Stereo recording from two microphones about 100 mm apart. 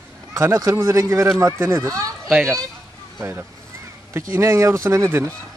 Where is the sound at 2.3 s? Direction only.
10° right (ahead or behind).